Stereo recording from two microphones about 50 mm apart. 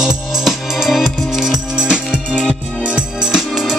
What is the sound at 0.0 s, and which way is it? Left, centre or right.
Music, centre.